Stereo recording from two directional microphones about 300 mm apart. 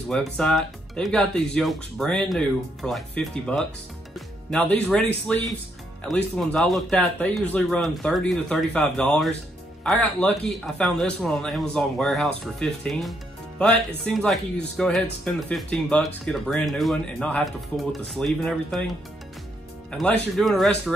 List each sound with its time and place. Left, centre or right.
0.1 s speech: centre